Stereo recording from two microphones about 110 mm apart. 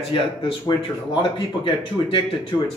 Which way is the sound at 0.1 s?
50° left (ahead or behind).